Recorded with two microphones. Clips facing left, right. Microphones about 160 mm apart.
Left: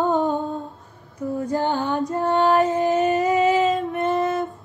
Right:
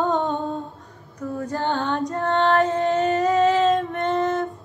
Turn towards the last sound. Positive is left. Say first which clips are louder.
# even
turn(degrees=0)  # may be behind; listen again after turning